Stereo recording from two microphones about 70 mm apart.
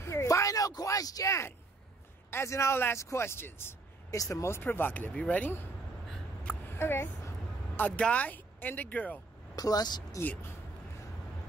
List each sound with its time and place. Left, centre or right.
0.0 s a sound: left
2.3 s speech: left
4.1 s speech: left
5.1 s speech: centre
6.7 s speech: left
7.7 s speech: left
9.6 s speech: left